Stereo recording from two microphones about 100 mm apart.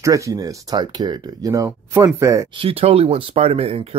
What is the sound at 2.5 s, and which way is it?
Speech, 65° right (ahead or behind).